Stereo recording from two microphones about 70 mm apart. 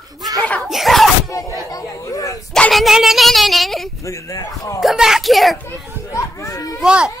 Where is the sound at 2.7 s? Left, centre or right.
Centre.